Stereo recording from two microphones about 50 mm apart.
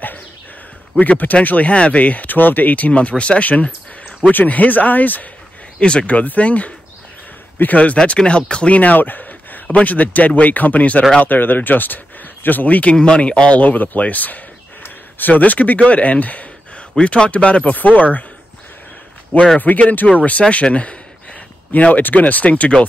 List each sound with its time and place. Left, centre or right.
0.9 s speech: left
5.8 s speech: left
8.0 s a man's voice: centre
13.0 s speech: left
13.6 s speech: left
16.9 s speech: centre
19.6 s speech: left